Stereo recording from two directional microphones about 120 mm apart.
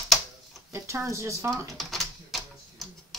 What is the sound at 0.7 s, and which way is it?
Speech, 25° right (ahead or behind).